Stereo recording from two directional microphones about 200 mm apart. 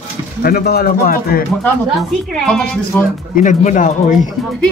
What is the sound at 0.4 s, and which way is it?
A man's voice, 50° left (ahead or behind).